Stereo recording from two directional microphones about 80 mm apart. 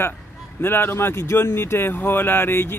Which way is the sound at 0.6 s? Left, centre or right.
Left.